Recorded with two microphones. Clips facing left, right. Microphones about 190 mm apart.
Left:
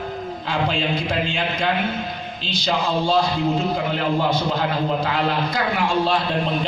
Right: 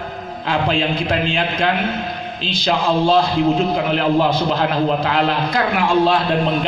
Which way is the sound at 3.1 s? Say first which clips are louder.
Right 4 dB; 65° right (ahead or behind).